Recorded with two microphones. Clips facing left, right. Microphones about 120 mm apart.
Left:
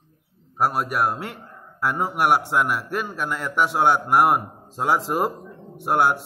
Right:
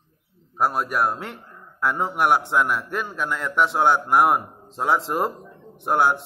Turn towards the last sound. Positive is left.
turn(degrees=5)  # may be behind; listen again after turning